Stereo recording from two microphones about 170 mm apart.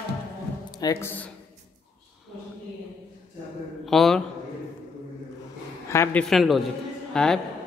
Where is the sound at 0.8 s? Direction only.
15° left (ahead or behind).